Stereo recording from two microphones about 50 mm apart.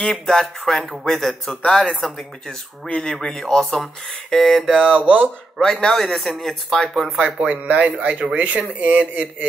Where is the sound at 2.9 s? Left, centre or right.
Centre.